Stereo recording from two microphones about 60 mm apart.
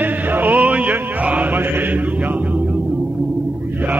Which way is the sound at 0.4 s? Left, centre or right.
Right.